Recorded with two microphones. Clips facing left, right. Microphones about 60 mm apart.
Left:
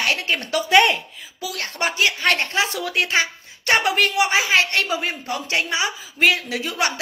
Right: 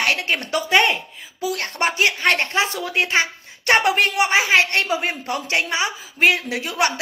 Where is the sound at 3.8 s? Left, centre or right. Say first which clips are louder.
Right 1 dB; right.